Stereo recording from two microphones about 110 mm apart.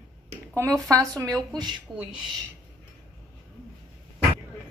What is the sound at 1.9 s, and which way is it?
Speech, 5° right (ahead or behind).